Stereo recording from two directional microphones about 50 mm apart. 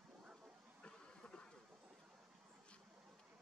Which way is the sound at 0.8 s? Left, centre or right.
Left.